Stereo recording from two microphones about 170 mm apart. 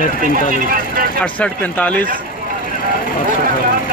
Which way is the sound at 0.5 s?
55° right (ahead or behind).